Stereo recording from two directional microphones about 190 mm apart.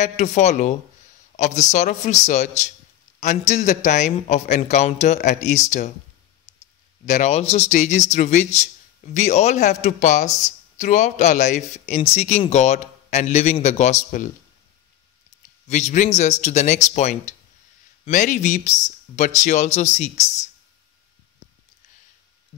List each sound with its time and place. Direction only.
0.0 s a man's voice: 40° left (ahead or behind)
7.1 s a man's voice: 35° left (ahead or behind)
15.7 s a man's voice: 40° left (ahead or behind)